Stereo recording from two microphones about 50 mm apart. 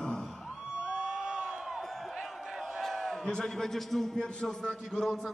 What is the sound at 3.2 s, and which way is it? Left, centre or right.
A man's voice, centre.